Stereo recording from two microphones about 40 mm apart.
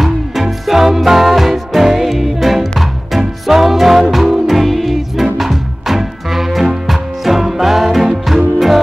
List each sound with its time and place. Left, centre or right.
0.0 s music: centre